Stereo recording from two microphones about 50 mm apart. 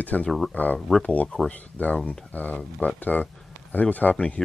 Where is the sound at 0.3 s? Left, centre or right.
Centre.